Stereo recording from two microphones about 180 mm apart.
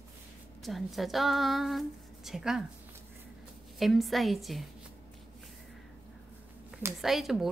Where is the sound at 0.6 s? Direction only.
Centre (ahead or behind).